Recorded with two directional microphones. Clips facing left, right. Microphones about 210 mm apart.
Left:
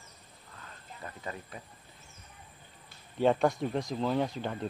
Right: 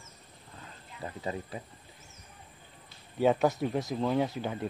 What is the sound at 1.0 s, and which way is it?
Speech, 25° right (ahead or behind).